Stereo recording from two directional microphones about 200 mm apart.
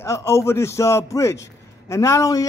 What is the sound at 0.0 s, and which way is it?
A man's voice, 15° left (ahead or behind).